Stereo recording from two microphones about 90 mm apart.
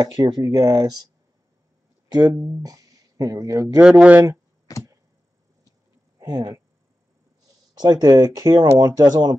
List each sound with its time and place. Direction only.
0.0 s speech: 50° right (ahead or behind)
2.0 s speech: 55° right (ahead or behind)
2.6 s speech: 45° right (ahead or behind)
3.8 s speech: centre (ahead or behind)
4.7 s arrow: 40° left (ahead or behind)
6.2 s speech: 50° right (ahead or behind)
7.7 s speech: 45° right (ahead or behind)